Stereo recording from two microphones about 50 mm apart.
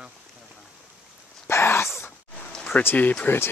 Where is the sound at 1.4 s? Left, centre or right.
Left.